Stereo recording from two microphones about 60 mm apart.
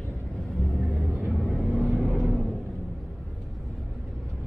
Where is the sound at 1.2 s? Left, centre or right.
Centre.